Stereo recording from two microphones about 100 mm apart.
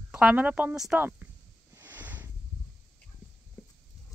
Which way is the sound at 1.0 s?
20° right (ahead or behind).